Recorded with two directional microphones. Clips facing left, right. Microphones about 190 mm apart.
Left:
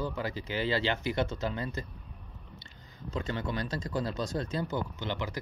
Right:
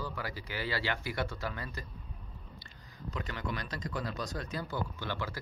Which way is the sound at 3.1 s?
25° left (ahead or behind).